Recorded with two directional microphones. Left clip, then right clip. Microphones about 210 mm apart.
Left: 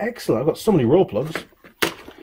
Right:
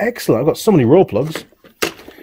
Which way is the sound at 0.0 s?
60° right (ahead or behind).